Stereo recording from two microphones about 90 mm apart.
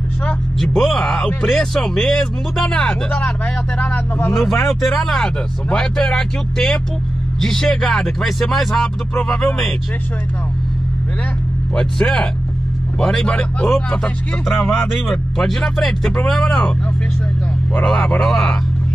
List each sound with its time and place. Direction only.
0.6 s speech: 5° left (ahead or behind)
4.4 s speech: centre (ahead or behind)
11.7 s speech: 10° left (ahead or behind)
17.8 s speech: 5° left (ahead or behind)